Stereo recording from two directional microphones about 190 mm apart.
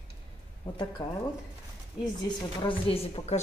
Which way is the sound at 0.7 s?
25° left (ahead or behind).